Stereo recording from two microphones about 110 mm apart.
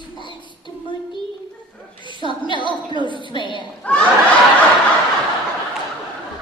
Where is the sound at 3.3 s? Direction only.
45° left (ahead or behind).